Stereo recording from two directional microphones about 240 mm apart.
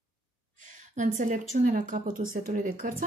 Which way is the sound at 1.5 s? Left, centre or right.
Right.